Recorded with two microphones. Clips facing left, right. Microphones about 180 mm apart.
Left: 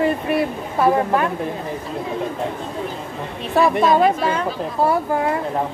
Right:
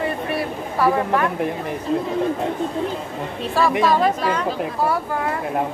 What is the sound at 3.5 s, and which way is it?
Speech, 20° left (ahead or behind).